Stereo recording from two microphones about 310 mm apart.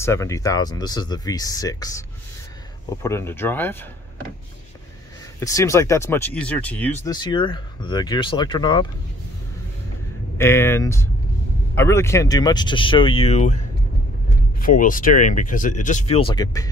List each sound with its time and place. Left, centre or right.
0.0 s speech: centre
5.4 s speech: centre
10.3 s speech: centre